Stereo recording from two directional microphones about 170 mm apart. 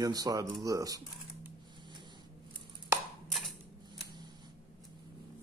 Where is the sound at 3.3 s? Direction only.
Centre (ahead or behind).